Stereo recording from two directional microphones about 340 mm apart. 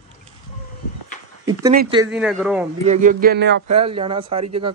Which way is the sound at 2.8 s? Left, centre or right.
Right.